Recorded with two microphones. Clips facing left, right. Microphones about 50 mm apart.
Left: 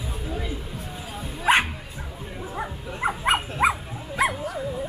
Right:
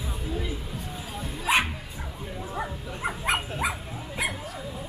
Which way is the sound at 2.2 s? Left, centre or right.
Centre.